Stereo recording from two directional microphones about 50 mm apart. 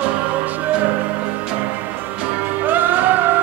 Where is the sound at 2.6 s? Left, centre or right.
Right.